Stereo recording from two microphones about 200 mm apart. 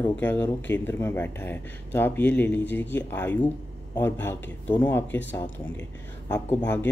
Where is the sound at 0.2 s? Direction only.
10° left (ahead or behind).